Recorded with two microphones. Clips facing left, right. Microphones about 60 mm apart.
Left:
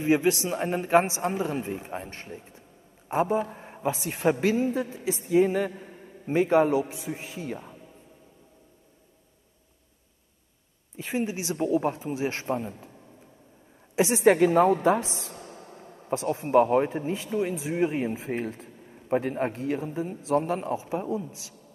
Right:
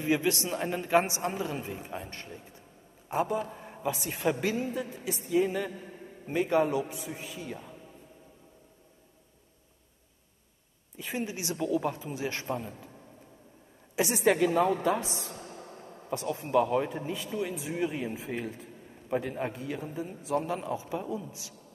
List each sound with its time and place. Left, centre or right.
0.0 s speech: left
2.0 s a man's voice: left
11.0 s speech: left
11.2 s speech: left
13.9 s a woman's voice: left
16.3 s a man's voice: left